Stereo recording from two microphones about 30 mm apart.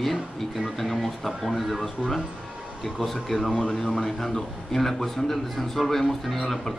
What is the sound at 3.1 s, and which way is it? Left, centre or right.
Speech, centre.